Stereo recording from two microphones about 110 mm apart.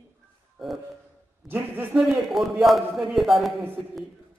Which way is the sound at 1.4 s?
15° right (ahead or behind).